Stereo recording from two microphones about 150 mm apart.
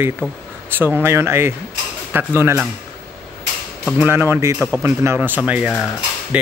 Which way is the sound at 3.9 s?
10° right (ahead or behind).